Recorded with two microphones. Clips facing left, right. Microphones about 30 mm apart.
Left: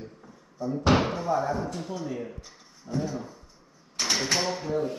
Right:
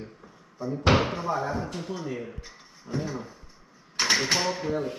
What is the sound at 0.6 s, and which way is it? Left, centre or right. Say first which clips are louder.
Speech: even; centre.